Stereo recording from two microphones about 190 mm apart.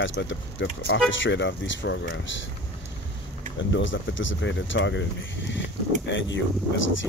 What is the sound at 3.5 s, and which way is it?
Speech, 75° left (ahead or behind).